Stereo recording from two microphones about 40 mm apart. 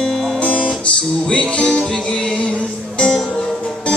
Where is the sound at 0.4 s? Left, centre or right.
Left.